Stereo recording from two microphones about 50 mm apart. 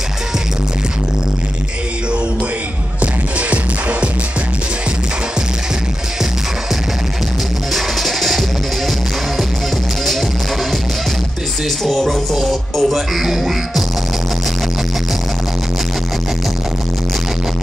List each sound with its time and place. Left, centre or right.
3.0 s music: right
7.7 s music: centre
11.8 s music: centre